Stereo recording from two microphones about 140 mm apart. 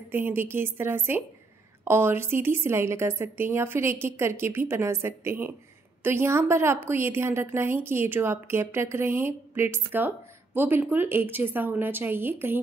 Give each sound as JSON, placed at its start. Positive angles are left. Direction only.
{"t": 0.1, "sound": "a woman's voice", "side_deg": -15}